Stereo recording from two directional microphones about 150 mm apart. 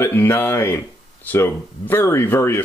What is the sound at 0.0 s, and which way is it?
Speech, 15° left (ahead or behind).